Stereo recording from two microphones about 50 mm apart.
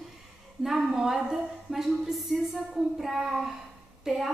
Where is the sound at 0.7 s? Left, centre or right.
Centre.